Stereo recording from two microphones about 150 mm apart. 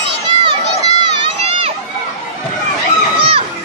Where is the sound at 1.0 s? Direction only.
35° right (ahead or behind).